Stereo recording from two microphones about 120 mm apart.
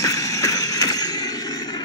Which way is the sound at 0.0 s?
30° left (ahead or behind).